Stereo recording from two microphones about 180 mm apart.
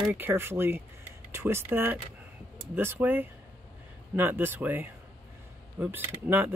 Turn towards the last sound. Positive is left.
turn(degrees=-10)  # may be behind; listen again after turning